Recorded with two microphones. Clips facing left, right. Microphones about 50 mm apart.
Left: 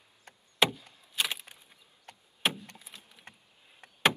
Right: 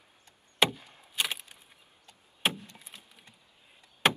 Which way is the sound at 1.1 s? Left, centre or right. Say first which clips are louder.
Even; centre.